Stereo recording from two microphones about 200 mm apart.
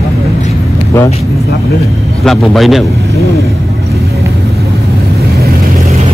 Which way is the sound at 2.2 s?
Centre (ahead or behind).